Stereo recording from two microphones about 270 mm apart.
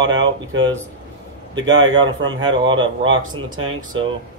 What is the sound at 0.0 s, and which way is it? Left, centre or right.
A man's voice, right.